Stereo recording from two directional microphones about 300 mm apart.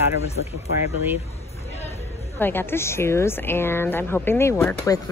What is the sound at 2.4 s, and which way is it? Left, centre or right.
A woman's voice, centre.